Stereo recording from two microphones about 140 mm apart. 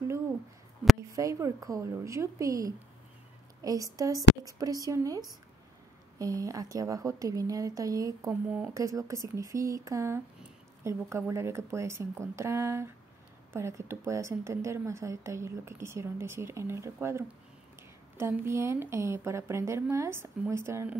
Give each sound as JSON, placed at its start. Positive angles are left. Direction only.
{"t": 1.1, "sound": "speech", "side_deg": -25}
{"t": 8.3, "sound": "speech", "side_deg": -10}
{"t": 8.7, "sound": "speech", "side_deg": -25}